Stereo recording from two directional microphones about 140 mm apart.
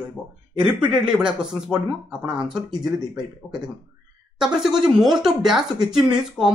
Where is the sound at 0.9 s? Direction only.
5° right (ahead or behind).